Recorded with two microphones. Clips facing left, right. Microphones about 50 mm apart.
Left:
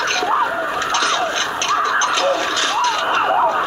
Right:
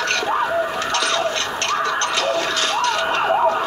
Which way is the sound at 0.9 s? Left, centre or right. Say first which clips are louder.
Left 5 dB; left.